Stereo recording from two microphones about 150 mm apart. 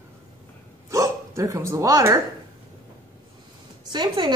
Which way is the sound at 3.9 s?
30° right (ahead or behind).